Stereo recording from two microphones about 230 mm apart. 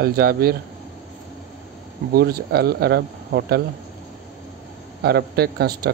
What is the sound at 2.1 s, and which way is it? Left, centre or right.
Speech, right.